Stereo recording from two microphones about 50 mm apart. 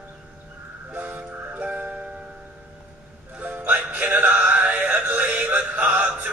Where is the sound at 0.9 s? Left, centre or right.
Right.